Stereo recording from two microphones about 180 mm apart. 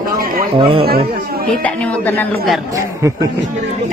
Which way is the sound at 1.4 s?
5° left (ahead or behind).